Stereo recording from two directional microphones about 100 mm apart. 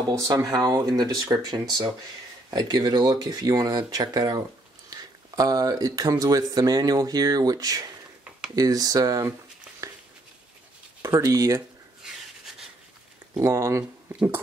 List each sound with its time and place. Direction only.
0.2 s speech: 35° right (ahead or behind)
11.0 s speech: 30° right (ahead or behind)
13.4 s speech: 30° right (ahead or behind)